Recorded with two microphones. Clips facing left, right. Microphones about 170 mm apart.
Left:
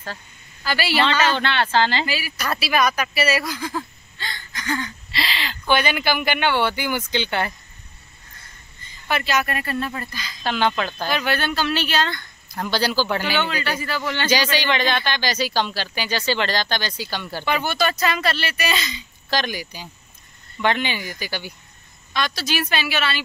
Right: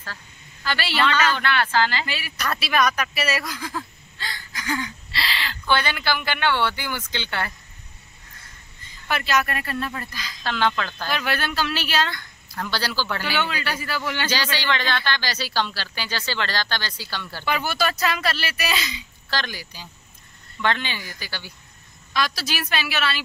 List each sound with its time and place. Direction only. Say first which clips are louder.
0.7 s speech: left 4 dB; 10° left (ahead or behind)
1.0 s speech: right 1 dB; 25° left (ahead or behind)
2.0 s speech: left 3 dB; 5° left (ahead or behind)
5.1 s speech: left 2 dB; 20° left (ahead or behind)
9.0 s speech: left 1 dB; centre (ahead or behind)
10.4 s speech: left 2 dB; 15° left (ahead or behind)
11.1 s speech: left 3 dB; centre (ahead or behind)
12.4 s speech: left 5 dB; 15° left (ahead or behind)
13.4 s speech: left 2 dB; 5° right (ahead or behind)
14.3 s speech: left 7 dB; 15° left (ahead or behind)
17.5 s speech: left 2 dB; 5° right (ahead or behind)
19.3 s speech: left 5 dB; 15° left (ahead or behind)
22.1 s speech: left 2 dB; 5° right (ahead or behind)